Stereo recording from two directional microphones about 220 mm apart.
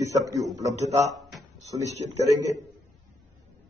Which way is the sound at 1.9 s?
30° right (ahead or behind).